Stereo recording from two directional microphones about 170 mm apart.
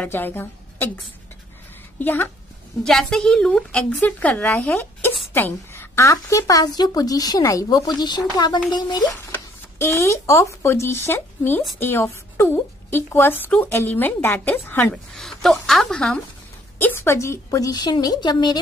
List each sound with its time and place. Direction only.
0.0 s a woman's voice: 10° left (ahead or behind)
2.0 s a woman's voice: 10° left (ahead or behind)
15.1 s a sound: centre (ahead or behind)
15.6 s a woman's voice: centre (ahead or behind); by 18.6 s 25° left (ahead or behind)